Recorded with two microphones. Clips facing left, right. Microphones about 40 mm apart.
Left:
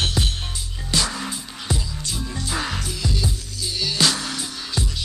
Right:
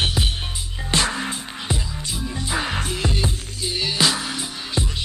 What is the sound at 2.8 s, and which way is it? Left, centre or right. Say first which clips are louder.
Music: right 3 dB; right.